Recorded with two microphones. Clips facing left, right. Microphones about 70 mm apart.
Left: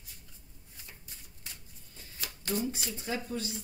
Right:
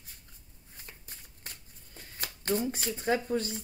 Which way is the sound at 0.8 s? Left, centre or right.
Right.